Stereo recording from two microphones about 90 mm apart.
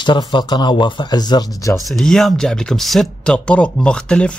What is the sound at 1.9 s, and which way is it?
Speech, 5° left (ahead or behind).